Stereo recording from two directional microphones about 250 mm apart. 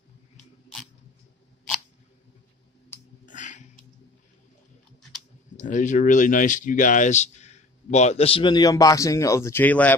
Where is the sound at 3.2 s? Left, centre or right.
Left.